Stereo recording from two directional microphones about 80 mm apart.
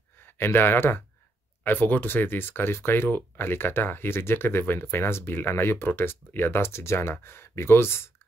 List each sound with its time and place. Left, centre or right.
0.2 s speech: left